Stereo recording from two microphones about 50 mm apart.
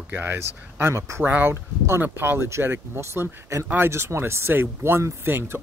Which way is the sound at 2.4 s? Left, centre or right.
Right.